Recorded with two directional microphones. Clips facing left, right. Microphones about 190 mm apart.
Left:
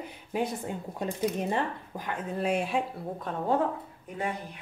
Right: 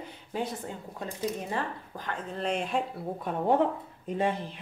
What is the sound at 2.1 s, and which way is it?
Speech, 10° left (ahead or behind).